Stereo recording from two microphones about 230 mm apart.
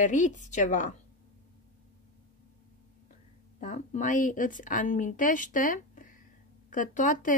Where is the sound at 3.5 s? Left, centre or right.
Left.